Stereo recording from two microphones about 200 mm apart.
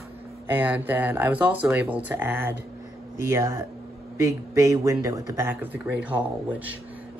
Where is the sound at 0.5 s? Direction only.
10° right (ahead or behind).